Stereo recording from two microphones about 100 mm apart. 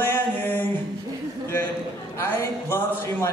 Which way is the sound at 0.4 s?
20° left (ahead or behind).